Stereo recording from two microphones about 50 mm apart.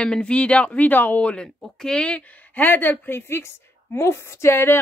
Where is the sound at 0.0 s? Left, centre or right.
Left.